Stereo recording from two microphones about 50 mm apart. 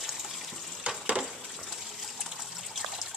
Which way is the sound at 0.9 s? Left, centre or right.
Right.